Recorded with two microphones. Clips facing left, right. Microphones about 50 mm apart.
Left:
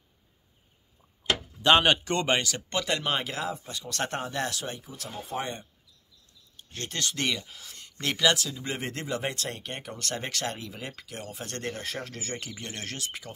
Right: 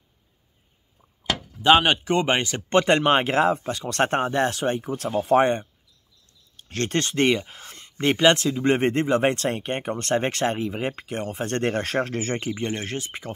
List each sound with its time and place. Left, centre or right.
1.6 s speech: centre; by 2.6 s right
2.7 s speech: right
6.5 s a sound: right
7.0 s speech: right
11.7 s speech: right